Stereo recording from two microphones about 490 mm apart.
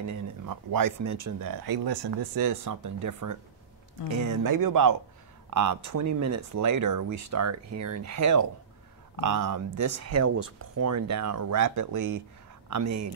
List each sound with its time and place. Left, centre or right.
0.0 s speech: right